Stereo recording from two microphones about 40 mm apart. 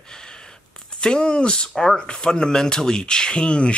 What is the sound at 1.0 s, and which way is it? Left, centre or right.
Speech, left.